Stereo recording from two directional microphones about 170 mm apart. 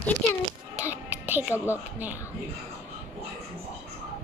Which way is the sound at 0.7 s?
10° right (ahead or behind).